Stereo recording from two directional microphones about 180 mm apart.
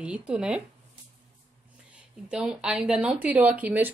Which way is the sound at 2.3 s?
5° right (ahead or behind).